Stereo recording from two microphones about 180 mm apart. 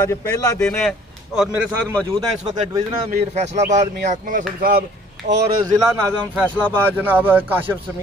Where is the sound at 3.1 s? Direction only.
40° right (ahead or behind); by 5.4 s 65° right (ahead or behind).